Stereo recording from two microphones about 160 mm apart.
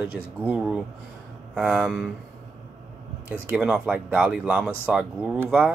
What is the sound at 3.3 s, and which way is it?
Speech, 5° right (ahead or behind).